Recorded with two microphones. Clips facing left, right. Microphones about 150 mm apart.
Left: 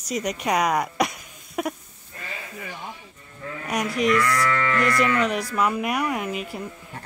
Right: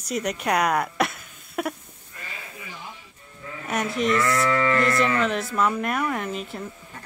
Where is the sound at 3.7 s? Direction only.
Centre (ahead or behind).